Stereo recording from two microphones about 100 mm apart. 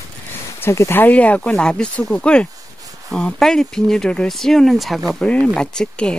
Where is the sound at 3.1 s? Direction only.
5° left (ahead or behind).